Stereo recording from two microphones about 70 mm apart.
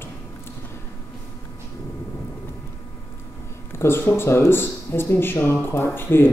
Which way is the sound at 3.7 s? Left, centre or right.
Left.